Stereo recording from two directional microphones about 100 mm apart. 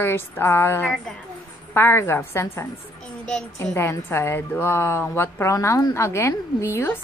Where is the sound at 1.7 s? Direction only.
25° left (ahead or behind).